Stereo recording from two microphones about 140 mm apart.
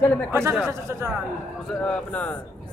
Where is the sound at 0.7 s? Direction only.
20° right (ahead or behind).